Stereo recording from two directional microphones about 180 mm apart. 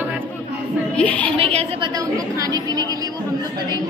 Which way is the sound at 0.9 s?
5° left (ahead or behind).